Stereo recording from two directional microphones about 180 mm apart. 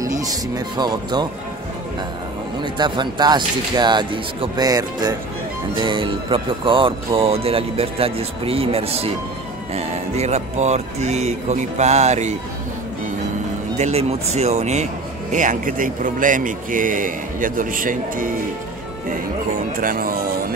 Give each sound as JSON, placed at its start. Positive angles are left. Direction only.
{"t": 0.0, "sound": "speech", "side_deg": -20}
{"t": 2.6, "sound": "speech", "side_deg": -25}
{"t": 13.7, "sound": "a man's voice", "side_deg": -40}